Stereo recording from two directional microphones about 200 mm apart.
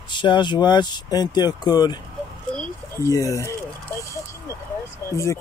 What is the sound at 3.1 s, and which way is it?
Speech, 15° left (ahead or behind).